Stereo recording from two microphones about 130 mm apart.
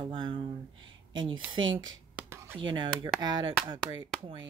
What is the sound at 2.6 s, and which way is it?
Speech, 35° right (ahead or behind).